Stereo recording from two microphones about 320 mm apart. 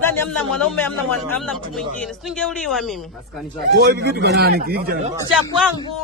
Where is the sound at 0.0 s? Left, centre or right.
Centre.